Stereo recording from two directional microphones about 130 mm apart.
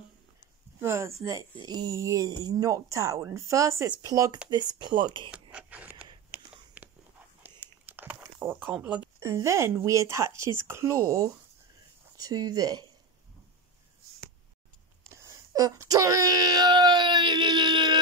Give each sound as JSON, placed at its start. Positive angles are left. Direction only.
{"t": 0.7, "sound": "speech", "side_deg": -20}
{"t": 5.3, "sound": "a sound", "side_deg": -10}
{"t": 6.3, "sound": "whispering", "side_deg": -10}
{"t": 7.6, "sound": "crumpling", "side_deg": -15}
{"t": 8.2, "sound": "speech", "side_deg": -15}
{"t": 9.2, "sound": "speech", "side_deg": -20}
{"t": 12.2, "sound": "speech", "side_deg": -30}
{"t": 15.2, "sound": "speech", "side_deg": -25}